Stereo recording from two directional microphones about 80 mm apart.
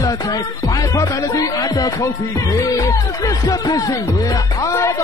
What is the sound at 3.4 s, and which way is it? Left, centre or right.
Music, left.